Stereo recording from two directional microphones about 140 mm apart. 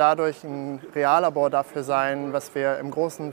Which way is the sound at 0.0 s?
25° right (ahead or behind).